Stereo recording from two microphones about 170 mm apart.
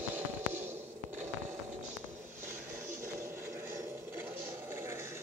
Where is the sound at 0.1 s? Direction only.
10° right (ahead or behind).